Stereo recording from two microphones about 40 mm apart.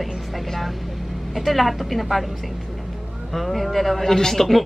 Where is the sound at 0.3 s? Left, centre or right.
Centre.